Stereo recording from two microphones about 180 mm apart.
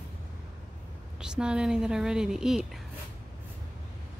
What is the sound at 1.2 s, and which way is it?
A woman's voice, 5° right (ahead or behind).